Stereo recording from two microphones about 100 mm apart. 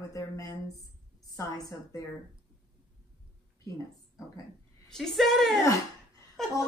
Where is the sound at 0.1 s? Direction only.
35° left (ahead or behind).